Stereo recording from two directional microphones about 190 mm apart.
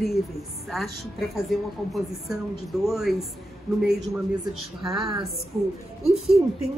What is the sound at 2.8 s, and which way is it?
Speech, centre (ahead or behind).